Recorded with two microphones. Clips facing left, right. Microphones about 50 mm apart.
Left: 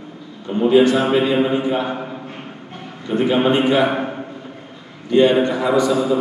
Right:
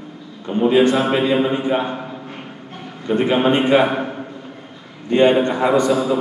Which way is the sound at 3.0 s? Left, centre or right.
Right.